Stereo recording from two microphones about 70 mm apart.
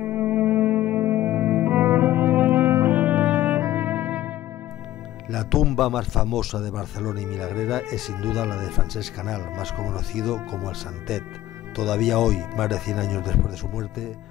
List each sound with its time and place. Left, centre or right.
0.0 s music: right
5.3 s a man's voice: centre